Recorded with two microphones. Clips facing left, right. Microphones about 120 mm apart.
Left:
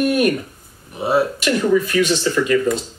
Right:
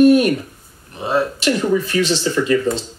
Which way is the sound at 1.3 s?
30° right (ahead or behind).